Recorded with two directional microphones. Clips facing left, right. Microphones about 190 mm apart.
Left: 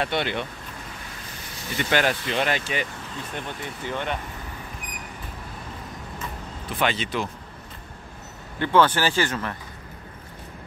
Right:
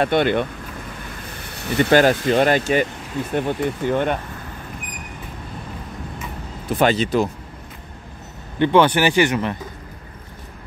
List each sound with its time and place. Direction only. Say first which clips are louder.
0.0 s speech: right 8 dB; 50° right (ahead or behind)
1.5 s a sound: right 10 dB; 65° right (ahead or behind)
1.9 s speech: right 8 dB; 40° right (ahead or behind)
6.8 s speech: right 8 dB; 40° right (ahead or behind)
8.5 s speech: right 5 dB; 20° right (ahead or behind)